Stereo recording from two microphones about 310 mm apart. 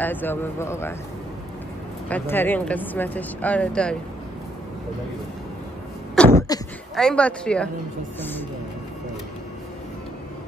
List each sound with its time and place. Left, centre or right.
0.0 s speech: centre
2.0 s speech: centre
6.2 s sneeze: centre
7.0 s speech: centre